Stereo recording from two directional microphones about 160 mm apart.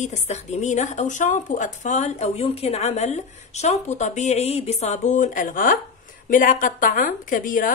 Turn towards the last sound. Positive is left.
turn(degrees=55)  # may be behind; listen again after turning